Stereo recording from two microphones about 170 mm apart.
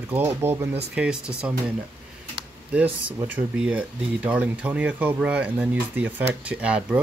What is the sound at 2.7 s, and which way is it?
Speech, 10° right (ahead or behind).